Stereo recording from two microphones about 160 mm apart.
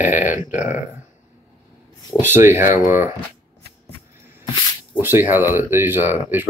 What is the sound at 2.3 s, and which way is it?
Speech, 15° right (ahead or behind).